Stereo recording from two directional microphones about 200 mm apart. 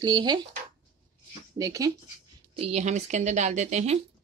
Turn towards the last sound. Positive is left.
turn(degrees=-35)  # may be behind; listen again after turning